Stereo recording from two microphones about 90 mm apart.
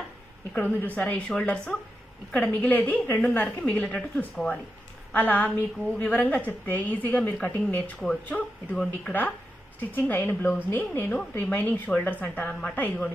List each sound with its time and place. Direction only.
0.5 s a woman's voice: 15° left (ahead or behind)
2.7 s a woman's voice: 20° left (ahead or behind)